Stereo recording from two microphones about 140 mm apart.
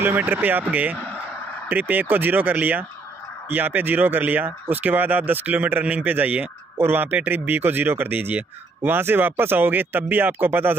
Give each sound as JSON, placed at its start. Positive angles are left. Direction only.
{"t": 0.0, "sound": "speech", "side_deg": -15}